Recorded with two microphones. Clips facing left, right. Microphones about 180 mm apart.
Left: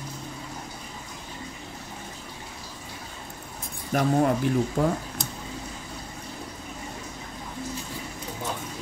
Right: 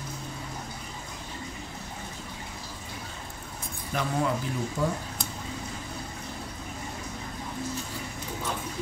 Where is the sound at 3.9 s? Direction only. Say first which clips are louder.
Left 6 dB; 50° left (ahead or behind).